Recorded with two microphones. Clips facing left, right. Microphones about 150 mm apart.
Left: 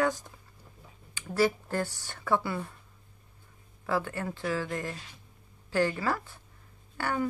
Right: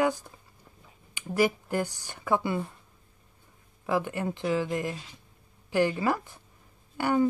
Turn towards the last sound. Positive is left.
turn(degrees=-15)  # may be behind; listen again after turning